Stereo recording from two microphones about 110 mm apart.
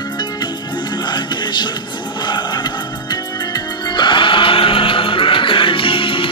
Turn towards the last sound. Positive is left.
turn(degrees=50)  # may be behind; listen again after turning